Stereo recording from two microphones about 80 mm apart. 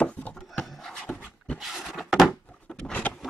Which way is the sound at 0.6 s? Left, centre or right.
Centre.